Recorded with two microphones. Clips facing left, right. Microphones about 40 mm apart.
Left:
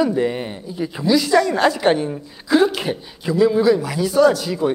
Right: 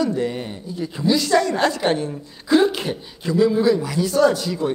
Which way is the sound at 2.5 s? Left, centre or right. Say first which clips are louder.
Left 1 dB; centre.